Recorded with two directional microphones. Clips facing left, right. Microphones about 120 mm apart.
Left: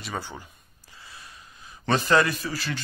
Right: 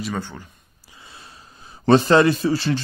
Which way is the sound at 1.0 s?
25° right (ahead or behind).